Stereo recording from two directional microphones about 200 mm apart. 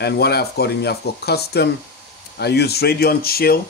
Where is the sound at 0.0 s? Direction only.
55° left (ahead or behind).